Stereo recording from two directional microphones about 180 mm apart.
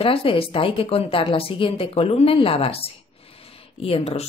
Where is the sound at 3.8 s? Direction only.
30° left (ahead or behind).